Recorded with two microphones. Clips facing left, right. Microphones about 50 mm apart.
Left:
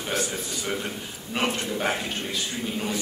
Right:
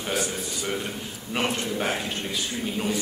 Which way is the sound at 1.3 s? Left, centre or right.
Centre.